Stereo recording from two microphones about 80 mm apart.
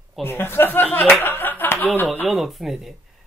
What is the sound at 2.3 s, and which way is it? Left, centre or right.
Speech, centre.